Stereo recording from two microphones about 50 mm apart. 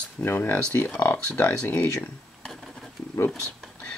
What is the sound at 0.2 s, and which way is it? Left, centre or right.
Speech, left.